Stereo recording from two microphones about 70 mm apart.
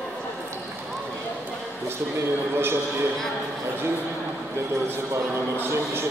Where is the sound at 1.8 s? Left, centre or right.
Right.